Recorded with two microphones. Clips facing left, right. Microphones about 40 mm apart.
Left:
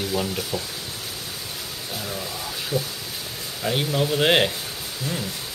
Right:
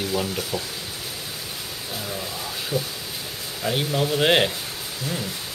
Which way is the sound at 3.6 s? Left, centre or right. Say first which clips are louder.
Even; centre.